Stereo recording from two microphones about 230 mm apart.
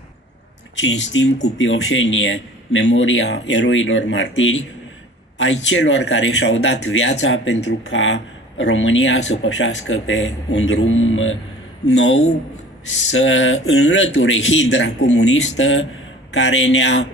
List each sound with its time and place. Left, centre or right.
0.7 s a man's voice: left